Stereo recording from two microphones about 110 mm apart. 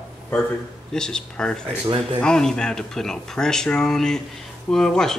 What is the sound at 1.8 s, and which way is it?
Speech, 55° right (ahead or behind).